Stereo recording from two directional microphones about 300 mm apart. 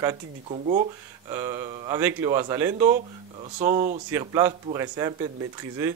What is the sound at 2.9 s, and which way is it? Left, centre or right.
Speech, right.